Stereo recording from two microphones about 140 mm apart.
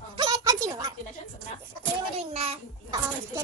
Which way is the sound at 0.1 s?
30° right (ahead or behind).